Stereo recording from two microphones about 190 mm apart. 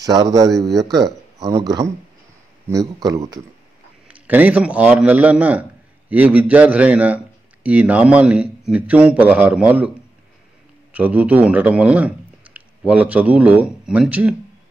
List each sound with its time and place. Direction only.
0.0 s speech: 20° right (ahead or behind)
2.7 s speech: 20° right (ahead or behind)
4.1 s a man's voice: 10° right (ahead or behind)